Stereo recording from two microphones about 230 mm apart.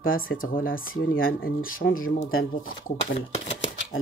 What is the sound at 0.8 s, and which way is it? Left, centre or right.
Speech, left.